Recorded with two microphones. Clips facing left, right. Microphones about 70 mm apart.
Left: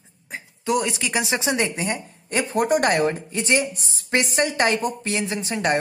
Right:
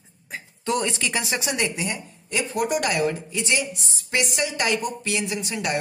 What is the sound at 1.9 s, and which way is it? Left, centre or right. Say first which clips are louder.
Speech: left 3 dB; left.